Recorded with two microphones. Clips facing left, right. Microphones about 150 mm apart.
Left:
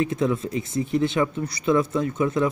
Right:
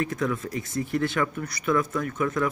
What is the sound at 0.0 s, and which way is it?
Speech, 25° left (ahead or behind).